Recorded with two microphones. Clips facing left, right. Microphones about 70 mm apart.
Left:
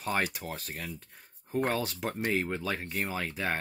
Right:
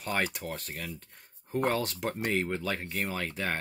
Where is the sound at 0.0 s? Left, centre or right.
Centre.